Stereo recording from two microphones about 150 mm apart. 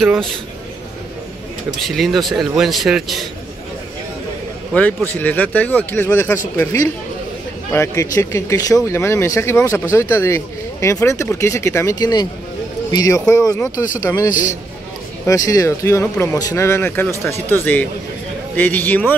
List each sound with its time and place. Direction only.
1.8 s speech: centre (ahead or behind)
4.7 s speech: 10° left (ahead or behind)
18.6 s speech: 10° left (ahead or behind)